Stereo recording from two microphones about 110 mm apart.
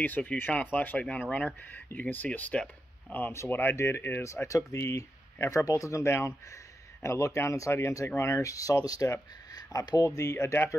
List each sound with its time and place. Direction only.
0.0 s speech: 15° left (ahead or behind)